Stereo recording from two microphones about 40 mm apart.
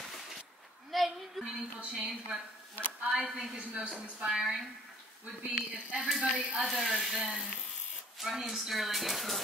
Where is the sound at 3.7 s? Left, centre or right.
Right.